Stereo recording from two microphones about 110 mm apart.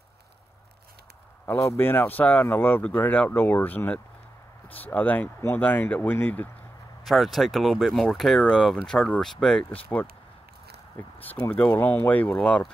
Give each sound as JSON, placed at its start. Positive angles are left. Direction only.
{"t": 1.4, "sound": "speech", "side_deg": 25}
{"t": 7.1, "sound": "speech", "side_deg": 0}
{"t": 9.8, "sound": "speech", "side_deg": 15}
{"t": 11.1, "sound": "speech", "side_deg": 15}